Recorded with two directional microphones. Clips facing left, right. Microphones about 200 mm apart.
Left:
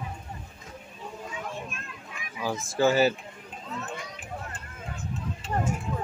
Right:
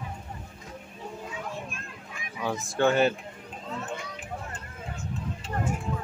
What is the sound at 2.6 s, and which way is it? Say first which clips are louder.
Speech: left 1 dB; 5° left (ahead or behind).